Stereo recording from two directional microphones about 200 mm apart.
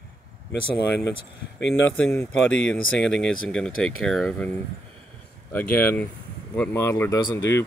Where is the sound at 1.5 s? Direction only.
70° left (ahead or behind).